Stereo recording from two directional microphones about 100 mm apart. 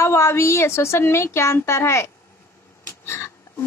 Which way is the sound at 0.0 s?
30° left (ahead or behind).